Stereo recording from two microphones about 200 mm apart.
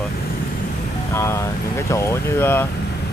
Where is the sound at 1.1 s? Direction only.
15° left (ahead or behind).